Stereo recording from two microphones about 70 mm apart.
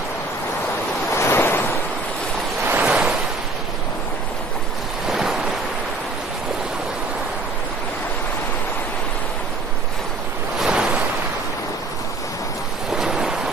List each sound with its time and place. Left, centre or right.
1.1 s waves: left
2.6 s waves: right
5.0 s waves: centre
10.6 s waves: centre
12.9 s waves: centre